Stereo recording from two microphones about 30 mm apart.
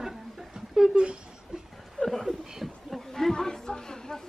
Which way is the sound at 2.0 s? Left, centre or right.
Left.